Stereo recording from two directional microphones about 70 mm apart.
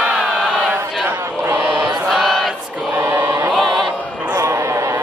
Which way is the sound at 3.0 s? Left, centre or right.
Right.